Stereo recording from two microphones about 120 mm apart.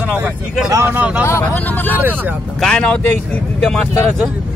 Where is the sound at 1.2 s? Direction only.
20° left (ahead or behind).